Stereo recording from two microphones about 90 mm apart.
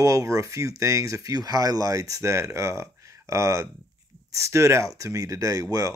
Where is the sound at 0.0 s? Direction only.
35° right (ahead or behind).